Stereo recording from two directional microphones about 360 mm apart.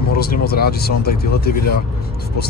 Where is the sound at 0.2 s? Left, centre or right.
Left.